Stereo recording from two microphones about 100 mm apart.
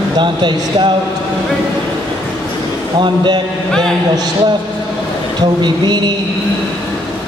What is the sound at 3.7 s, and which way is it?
Speech, 5° left (ahead or behind).